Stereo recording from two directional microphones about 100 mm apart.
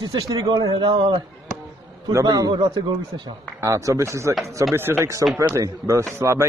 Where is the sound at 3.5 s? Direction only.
30° right (ahead or behind).